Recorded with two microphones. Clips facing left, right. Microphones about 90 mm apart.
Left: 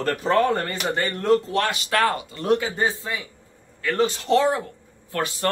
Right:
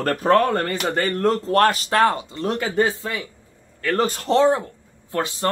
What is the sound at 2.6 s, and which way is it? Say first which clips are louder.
Speech: right 4 dB; 65° right (ahead or behind).